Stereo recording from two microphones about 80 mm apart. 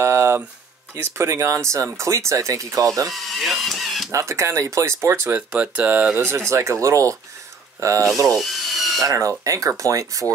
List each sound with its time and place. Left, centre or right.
0.0 s a sound: right
0.9 s speech: right
3.1 s speech: centre
4.1 s speech: right
5.3 s speech: centre
6.2 s speech: right
8.4 s wood: centre
9.0 s speech: right